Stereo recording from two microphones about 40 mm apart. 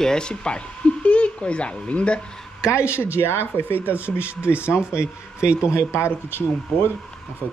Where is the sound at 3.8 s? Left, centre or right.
Right.